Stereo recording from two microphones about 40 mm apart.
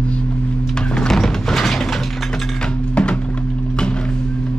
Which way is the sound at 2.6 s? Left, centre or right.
Left.